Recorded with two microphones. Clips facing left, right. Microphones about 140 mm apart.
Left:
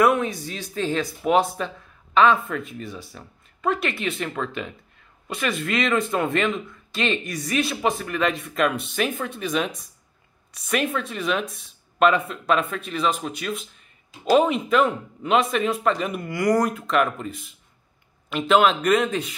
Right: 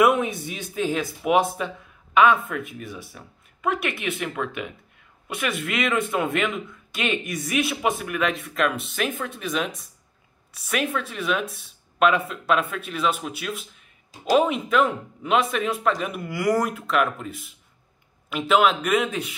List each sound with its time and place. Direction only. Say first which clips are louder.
0.0 s speech: even; 20° right (ahead or behind)
5.4 s speech: left 2 dB; 5° right (ahead or behind)